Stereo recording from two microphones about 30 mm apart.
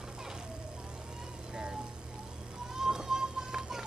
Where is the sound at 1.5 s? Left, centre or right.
Right.